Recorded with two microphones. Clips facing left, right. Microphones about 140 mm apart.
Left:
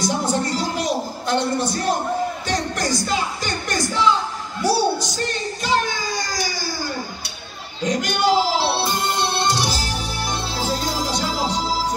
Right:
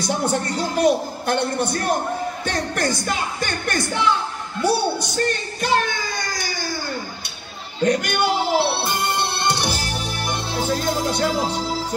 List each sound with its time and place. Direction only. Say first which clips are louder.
0.0 s a man's voice: left 1 dB; 55° right (ahead or behind)
7.8 s speech: right 1 dB; 55° right (ahead or behind)
9.5 s music: even; 60° right (ahead or behind)